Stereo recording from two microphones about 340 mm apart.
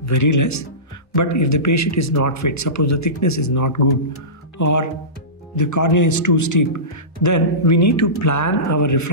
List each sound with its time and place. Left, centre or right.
0.0 s speech: left